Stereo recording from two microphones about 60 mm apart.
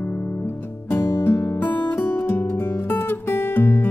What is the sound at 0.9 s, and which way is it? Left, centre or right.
Music, left.